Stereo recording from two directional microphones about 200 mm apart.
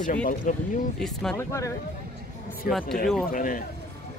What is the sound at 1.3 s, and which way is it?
Speech, 15° left (ahead or behind).